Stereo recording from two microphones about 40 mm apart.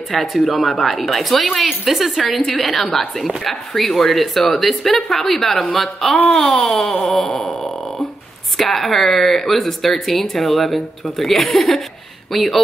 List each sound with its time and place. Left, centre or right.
0.1 s speech: centre
6.5 s a sound: centre
8.5 s speech: centre